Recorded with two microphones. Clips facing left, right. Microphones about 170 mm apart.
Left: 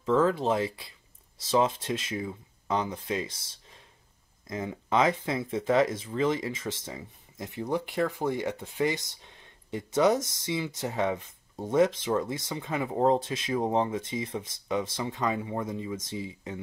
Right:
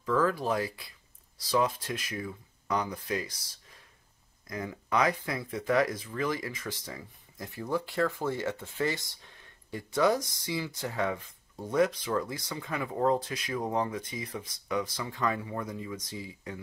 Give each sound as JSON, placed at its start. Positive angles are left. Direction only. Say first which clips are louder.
{"t": 0.0, "sound": "speech", "louder": "left 3 dB", "side_deg": 25}